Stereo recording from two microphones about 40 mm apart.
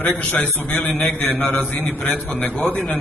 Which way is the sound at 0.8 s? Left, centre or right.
Left.